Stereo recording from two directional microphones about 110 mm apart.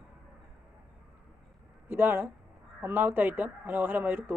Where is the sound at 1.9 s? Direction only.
20° right (ahead or behind).